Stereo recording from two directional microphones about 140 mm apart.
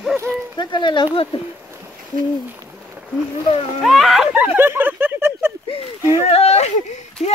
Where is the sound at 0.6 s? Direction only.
35° left (ahead or behind).